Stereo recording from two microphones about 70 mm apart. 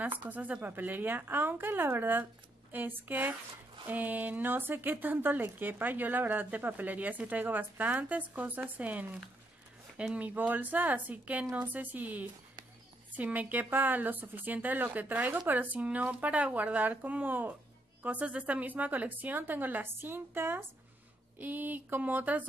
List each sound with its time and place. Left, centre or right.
0.0 s speech: right